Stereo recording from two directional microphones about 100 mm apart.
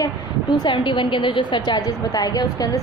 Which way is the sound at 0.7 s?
55° left (ahead or behind).